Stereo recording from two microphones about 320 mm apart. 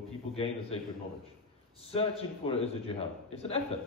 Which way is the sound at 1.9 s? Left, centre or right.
Centre.